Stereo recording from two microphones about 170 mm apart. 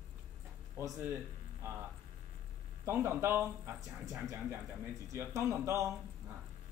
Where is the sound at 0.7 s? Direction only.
15° right (ahead or behind).